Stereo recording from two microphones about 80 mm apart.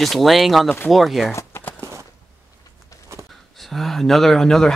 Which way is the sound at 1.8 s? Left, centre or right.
Right.